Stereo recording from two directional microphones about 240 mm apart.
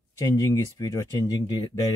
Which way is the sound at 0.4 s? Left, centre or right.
Centre.